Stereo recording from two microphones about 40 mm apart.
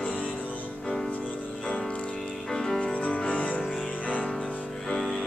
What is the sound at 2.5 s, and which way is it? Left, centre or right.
Music, centre.